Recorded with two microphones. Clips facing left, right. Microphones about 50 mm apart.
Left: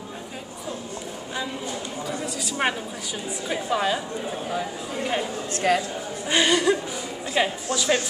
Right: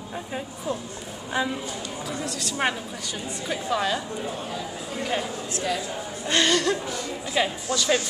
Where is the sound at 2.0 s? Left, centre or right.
Centre.